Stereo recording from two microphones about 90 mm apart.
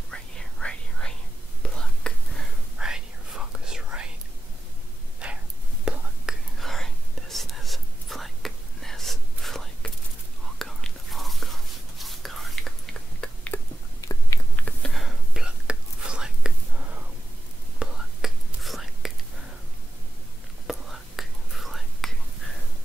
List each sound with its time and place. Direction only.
0.1 s whispering: 10° left (ahead or behind)
2.8 s whispering: 5° right (ahead or behind)
5.2 s a sound: 10° right (ahead or behind)
5.9 s whispering: 10° right (ahead or behind)
6.6 s whispering: 5° left (ahead or behind)
13.2 s a sound: 15° left (ahead or behind)
14.6 s whispering: 5° left (ahead or behind)
20.6 s whispering: centre (ahead or behind)